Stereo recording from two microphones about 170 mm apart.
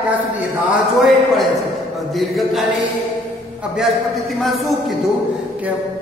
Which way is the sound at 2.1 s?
Centre (ahead or behind).